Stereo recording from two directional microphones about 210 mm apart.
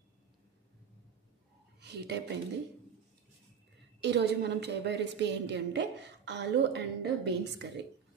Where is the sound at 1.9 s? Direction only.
50° right (ahead or behind).